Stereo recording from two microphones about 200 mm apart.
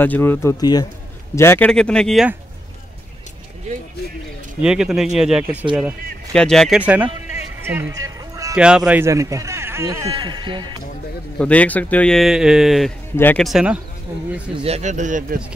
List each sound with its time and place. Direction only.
0.0 s speech: 10° left (ahead or behind)
4.6 s speech: 5° right (ahead or behind)
7.6 s music: 10° right (ahead or behind)
8.5 s a man's voice: 5° right (ahead or behind); by 10.8 s 25° right (ahead or behind)
11.3 s speech: 5° left (ahead or behind)
13.1 s speech: 10° left (ahead or behind)
13.5 s speech: 5° right (ahead or behind)
14.6 s speech: 35° right (ahead or behind)